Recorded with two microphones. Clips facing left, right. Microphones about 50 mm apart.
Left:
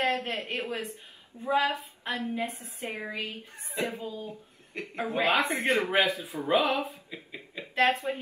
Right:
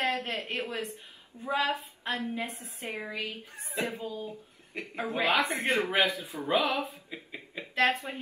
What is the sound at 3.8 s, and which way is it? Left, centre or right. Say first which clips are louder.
Speech: left 3 dB; left.